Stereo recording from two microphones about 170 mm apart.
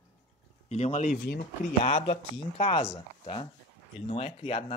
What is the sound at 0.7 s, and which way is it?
Speech, 40° left (ahead or behind).